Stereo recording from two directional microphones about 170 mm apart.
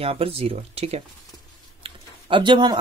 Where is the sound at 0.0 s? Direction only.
35° right (ahead or behind).